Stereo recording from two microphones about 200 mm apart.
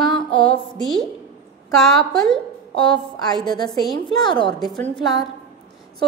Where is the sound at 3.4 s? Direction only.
20° left (ahead or behind).